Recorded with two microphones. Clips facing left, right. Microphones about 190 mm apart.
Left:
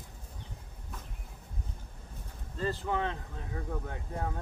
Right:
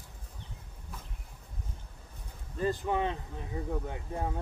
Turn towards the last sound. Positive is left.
turn(degrees=-15)  # may be behind; listen again after turning